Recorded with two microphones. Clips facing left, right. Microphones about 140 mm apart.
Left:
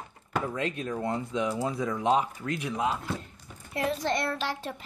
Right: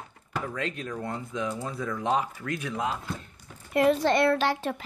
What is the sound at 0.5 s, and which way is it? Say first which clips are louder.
Speech: left 2 dB; 20° left (ahead or behind).